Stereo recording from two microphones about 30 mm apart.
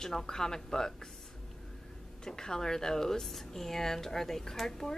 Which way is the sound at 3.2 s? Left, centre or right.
Centre.